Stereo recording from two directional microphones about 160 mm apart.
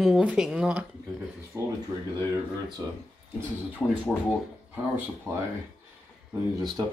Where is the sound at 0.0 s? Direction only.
5° right (ahead or behind).